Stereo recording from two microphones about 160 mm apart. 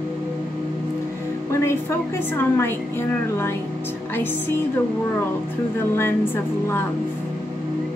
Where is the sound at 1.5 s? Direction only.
15° left (ahead or behind).